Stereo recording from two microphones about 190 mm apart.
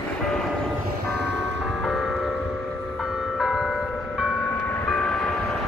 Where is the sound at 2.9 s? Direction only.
5° right (ahead or behind).